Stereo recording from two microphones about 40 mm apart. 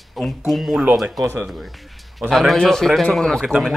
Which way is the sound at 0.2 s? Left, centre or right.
Centre.